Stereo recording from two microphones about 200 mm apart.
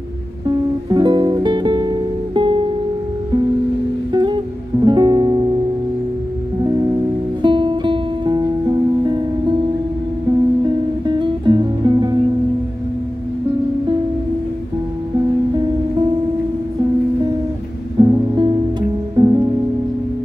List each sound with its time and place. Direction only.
0.8 s music: 20° right (ahead or behind)
4.1 s music: 20° right (ahead or behind)
7.4 s music: 25° right (ahead or behind)
11.1 s music: 25° right (ahead or behind)
17.9 s music: 20° right (ahead or behind)